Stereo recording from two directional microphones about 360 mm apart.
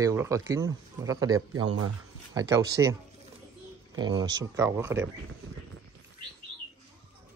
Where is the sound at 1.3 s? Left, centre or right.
Right.